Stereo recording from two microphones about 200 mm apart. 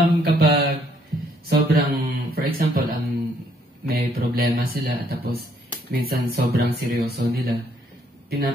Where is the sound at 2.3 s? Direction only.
50° right (ahead or behind).